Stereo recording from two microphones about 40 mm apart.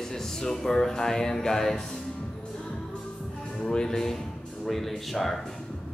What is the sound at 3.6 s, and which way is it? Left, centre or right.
Speech, centre.